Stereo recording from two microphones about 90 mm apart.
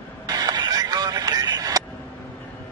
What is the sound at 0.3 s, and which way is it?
Radio, 45° right (ahead or behind).